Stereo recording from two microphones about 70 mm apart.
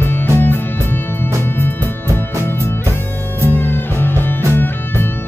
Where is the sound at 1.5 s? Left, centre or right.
Left.